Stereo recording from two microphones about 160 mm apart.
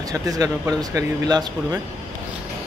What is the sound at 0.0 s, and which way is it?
Speech, 20° right (ahead or behind).